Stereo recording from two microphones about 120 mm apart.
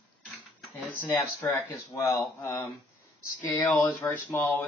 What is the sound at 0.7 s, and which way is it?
Speech, 15° left (ahead or behind).